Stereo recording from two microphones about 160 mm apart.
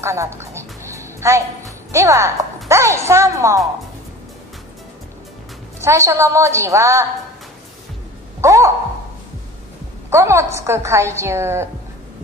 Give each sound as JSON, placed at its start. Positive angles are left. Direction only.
{"t": 0.0, "sound": "music", "side_deg": -15}
{"t": 1.9, "sound": "a woman's voice", "side_deg": -20}
{"t": 5.8, "sound": "a woman's voice", "side_deg": -15}
{"t": 8.4, "sound": "a sound", "side_deg": -20}
{"t": 10.0, "sound": "a woman's voice", "side_deg": -15}